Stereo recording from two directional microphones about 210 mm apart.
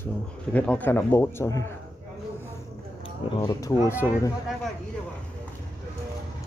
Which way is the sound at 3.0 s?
20° left (ahead or behind).